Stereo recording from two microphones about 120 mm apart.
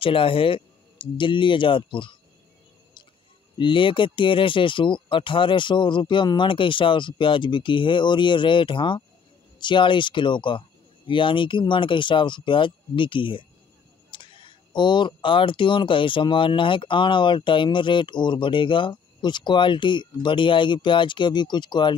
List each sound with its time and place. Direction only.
0.0 s speech: 50° left (ahead or behind)
3.5 s speech: 45° left (ahead or behind)